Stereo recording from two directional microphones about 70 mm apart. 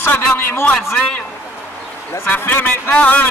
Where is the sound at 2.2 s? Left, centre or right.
Left.